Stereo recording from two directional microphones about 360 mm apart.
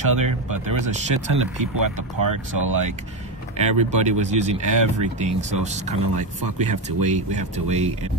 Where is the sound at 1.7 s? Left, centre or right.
Right.